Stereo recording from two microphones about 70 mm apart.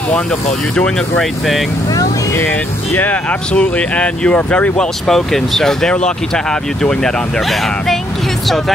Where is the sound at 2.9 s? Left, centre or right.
Left.